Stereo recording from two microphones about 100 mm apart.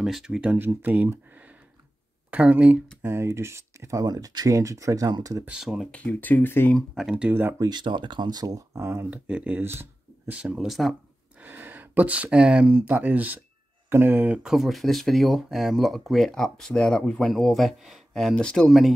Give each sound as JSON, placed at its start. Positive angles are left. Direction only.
{"t": 0.0, "sound": "speech", "side_deg": -5}
{"t": 0.6, "sound": "speech", "side_deg": -20}
{"t": 3.0, "sound": "speech", "side_deg": -25}
{"t": 5.6, "sound": "speech", "side_deg": 0}
{"t": 5.9, "sound": "speech", "side_deg": 15}
{"t": 7.0, "sound": "speech", "side_deg": -5}
{"t": 7.2, "sound": "speech", "side_deg": -20}
{"t": 7.5, "sound": "speech", "side_deg": -35}
{"t": 7.8, "sound": "speech", "side_deg": -50}
{"t": 11.3, "sound": "speech", "side_deg": -20}
{"t": 14.4, "sound": "speech", "side_deg": -5}